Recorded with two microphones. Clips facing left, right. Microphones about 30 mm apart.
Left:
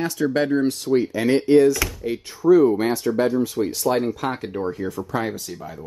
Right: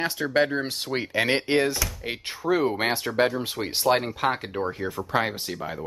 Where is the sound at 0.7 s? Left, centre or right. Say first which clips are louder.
Left 5 dB; right.